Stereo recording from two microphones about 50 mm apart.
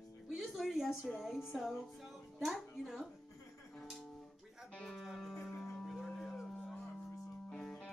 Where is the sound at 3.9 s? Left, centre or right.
Centre.